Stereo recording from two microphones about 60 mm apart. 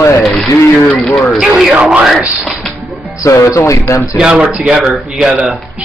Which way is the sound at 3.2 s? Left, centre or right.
Left.